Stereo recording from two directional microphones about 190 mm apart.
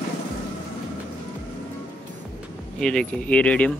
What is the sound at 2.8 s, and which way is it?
Speech, 5° left (ahead or behind).